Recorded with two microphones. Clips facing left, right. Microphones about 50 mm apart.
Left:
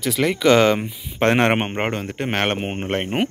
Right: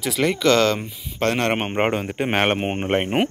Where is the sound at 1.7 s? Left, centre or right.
Centre.